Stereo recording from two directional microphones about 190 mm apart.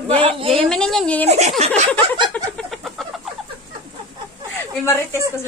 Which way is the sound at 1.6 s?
35° right (ahead or behind).